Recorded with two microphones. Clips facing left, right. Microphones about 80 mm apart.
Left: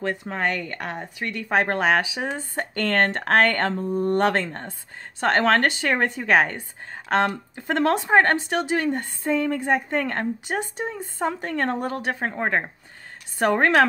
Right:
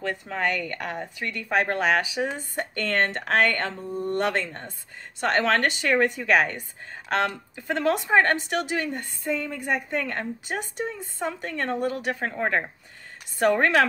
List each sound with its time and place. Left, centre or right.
0.0 s speech: left
1.5 s a woman's voice: left
2.7 s speech: left
3.3 s a woman's voice: left
7.6 s speech: left
8.0 s a woman's voice: left
12.2 s speech: left